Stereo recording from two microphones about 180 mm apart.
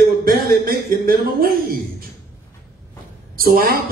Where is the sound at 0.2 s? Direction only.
55° right (ahead or behind).